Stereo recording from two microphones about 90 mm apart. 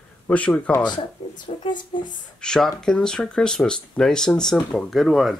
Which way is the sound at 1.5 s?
90° left.